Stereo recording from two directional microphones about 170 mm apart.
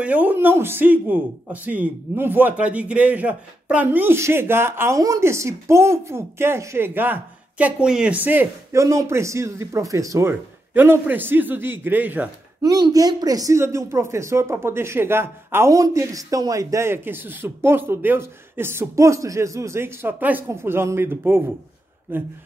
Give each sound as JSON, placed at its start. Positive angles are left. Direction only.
{"t": 0.0, "sound": "speech", "side_deg": -10}
{"t": 12.6, "sound": "speech", "side_deg": -20}